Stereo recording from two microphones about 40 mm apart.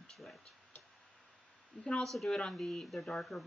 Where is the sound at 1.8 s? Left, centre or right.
Centre.